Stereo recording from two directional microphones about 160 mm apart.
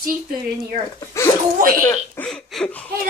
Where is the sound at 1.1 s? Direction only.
20° left (ahead or behind).